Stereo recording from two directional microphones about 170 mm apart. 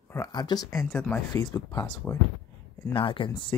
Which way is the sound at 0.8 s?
5° left (ahead or behind).